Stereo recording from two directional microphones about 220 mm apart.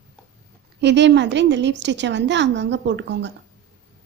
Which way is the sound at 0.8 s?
50° right (ahead or behind).